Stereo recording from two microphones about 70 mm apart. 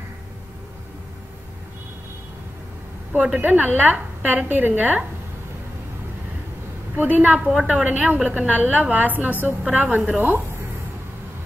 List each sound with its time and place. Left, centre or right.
3.3 s a woman's voice: right
7.0 s a woman's voice: right